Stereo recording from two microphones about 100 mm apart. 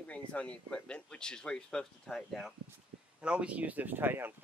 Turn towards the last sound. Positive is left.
turn(degrees=-20)  # may be behind; listen again after turning